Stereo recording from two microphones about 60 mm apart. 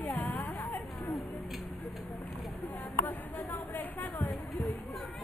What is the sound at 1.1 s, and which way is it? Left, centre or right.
Speech, centre.